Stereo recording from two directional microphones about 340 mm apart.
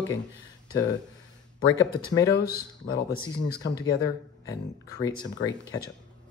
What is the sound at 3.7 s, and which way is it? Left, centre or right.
Speech, centre.